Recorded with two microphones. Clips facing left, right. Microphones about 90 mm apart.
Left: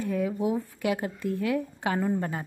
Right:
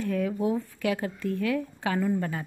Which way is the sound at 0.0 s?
15° left (ahead or behind).